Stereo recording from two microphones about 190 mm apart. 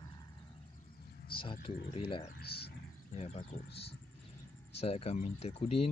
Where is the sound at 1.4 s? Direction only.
25° left (ahead or behind).